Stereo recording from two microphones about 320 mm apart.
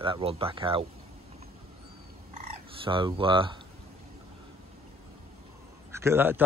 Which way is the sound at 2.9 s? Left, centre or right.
Centre.